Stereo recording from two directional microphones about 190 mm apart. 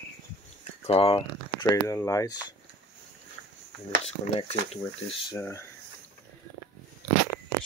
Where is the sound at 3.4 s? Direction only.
60° right (ahead or behind).